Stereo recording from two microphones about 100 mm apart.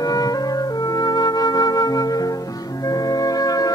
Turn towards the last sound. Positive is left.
turn(degrees=40)  # may be behind; listen again after turning